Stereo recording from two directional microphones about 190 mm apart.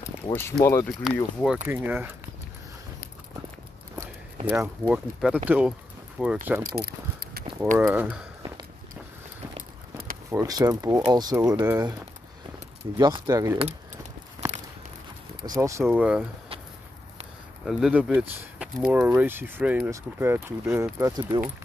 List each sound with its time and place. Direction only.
0.0 s speech: 10° left (ahead or behind)
0.8 s speech: centre (ahead or behind)
1.7 s speech: 10° right (ahead or behind)
4.0 s speech: 10° right (ahead or behind)
6.6 s a sound: 55° right (ahead or behind)
7.7 s speech: 10° right (ahead or behind)
10.3 s speech: 20° right (ahead or behind)
15.4 s speech: 20° right (ahead or behind)
15.8 s speech: 5° right (ahead or behind)
17.6 s speech: centre (ahead or behind)